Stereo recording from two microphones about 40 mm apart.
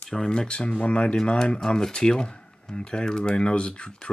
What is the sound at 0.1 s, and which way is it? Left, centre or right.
Speech, centre.